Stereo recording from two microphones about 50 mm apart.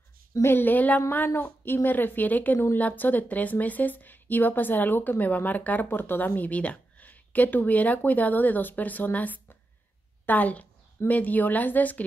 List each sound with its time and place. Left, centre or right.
0.5 s a woman's voice: left